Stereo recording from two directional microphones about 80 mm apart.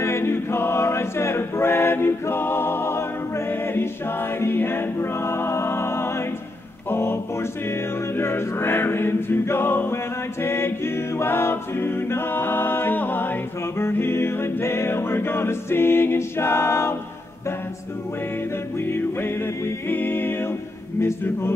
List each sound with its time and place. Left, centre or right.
0.0 s choir: left
4.4 s a capella: left
6.9 s music: left
8.2 s music: left
11.1 s a capella: left
13.7 s music: left
18.9 s music: left